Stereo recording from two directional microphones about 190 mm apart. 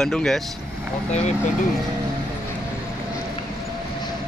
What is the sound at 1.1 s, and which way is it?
Speech, 40° left (ahead or behind).